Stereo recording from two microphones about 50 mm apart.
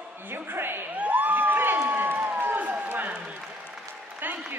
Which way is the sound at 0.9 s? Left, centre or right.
Right.